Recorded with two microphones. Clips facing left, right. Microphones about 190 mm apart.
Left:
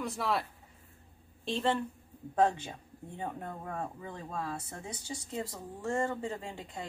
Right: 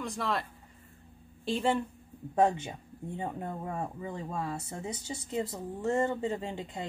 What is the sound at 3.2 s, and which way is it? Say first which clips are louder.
Speech: right 2 dB; 20° right (ahead or behind).